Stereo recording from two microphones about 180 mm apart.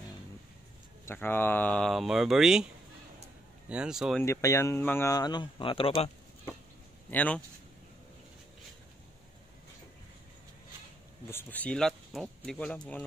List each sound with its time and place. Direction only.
1.0 s speech: 10° left (ahead or behind)
4.2 s speech: 15° left (ahead or behind)
7.1 s speech: 10° left (ahead or behind)
11.2 s speech: 10° left (ahead or behind)